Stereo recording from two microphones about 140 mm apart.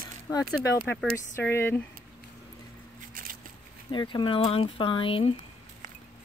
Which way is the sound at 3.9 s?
35° left (ahead or behind).